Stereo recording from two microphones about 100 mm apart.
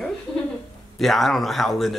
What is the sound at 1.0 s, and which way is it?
Speech, centre (ahead or behind).